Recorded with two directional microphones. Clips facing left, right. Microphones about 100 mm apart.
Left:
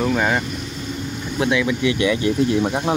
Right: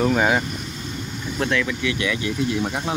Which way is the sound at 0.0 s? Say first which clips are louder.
Right 1 dB; 5° right (ahead or behind).